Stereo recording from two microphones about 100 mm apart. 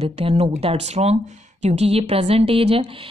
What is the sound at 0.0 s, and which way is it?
A woman's voice, 85° right.